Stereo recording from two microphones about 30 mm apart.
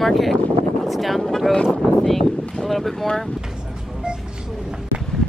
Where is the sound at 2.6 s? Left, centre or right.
Centre.